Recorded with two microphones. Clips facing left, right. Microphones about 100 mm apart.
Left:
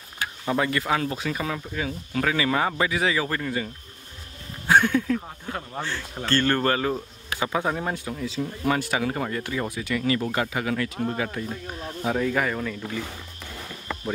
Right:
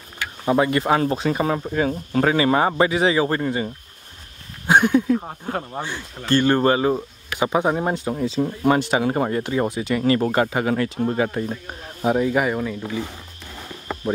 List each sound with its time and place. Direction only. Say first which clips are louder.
0.5 s speech: right 6 dB; 25° right (ahead or behind)
0.8 s speech: right 6 dB; 35° right (ahead or behind)
4.6 s speech: right 4 dB; 20° right (ahead or behind)
5.3 s speech: right 6 dB; 30° right (ahead or behind)
5.7 s speech: right 2 dB; 15° right (ahead or behind)
10.0 s speech: right 7 dB; 40° right (ahead or behind)
12.0 s speech: right 5 dB; 20° right (ahead or behind)